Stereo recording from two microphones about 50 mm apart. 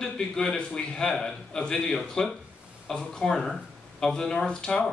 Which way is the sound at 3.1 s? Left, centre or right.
Centre.